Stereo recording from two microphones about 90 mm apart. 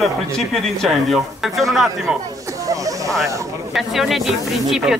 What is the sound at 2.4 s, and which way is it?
Snake, 40° right (ahead or behind).